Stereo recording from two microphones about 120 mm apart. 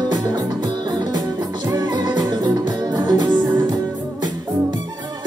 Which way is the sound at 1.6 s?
35° right (ahead or behind).